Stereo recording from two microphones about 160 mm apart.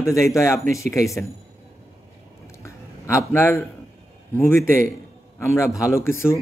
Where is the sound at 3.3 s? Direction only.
15° left (ahead or behind).